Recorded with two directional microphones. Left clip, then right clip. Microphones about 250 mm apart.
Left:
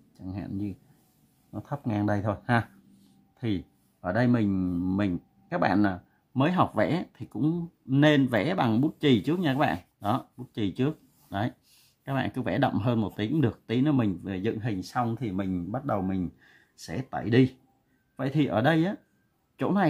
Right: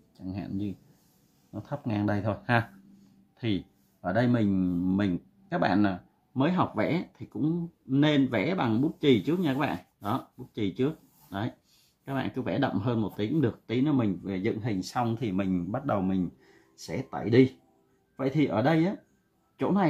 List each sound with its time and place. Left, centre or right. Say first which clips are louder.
0.2 s a sound: even; centre
1.5 s speech: left 1 dB; centre
6.3 s speech: left 2 dB; left; by 16.2 s centre
16.7 s speech: left 1 dB; left